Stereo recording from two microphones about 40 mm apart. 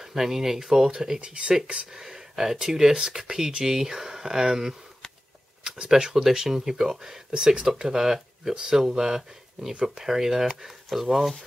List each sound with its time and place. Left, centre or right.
0.0 s speech: centre
1.2 s speech: right
1.9 s speech: centre
5.6 s a sound: centre
6.2 s speech: centre